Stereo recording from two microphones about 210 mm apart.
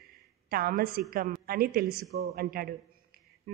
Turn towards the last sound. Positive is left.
turn(degrees=-40)  # may be behind; listen again after turning